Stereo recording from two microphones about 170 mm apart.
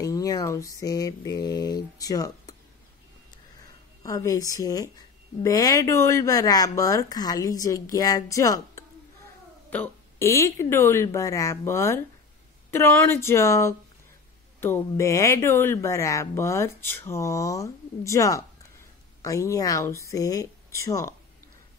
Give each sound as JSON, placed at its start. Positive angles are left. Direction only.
{"t": 0.0, "sound": "a woman's voice", "side_deg": 20}
{"t": 4.0, "sound": "a woman's voice", "side_deg": 20}